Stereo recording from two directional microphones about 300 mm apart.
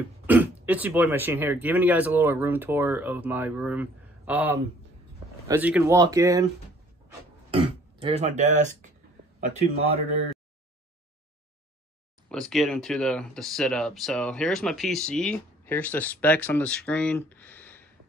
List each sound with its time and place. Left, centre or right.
0.3 s speech: centre
7.5 s speech: centre
12.3 s speech: centre